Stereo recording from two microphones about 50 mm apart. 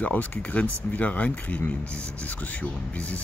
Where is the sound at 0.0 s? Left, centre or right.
Left.